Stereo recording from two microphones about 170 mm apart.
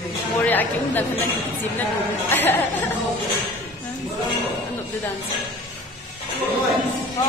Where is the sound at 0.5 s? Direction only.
10° left (ahead or behind).